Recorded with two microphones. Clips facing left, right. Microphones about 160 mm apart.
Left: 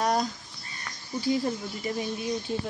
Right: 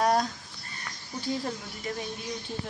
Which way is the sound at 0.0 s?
Centre (ahead or behind).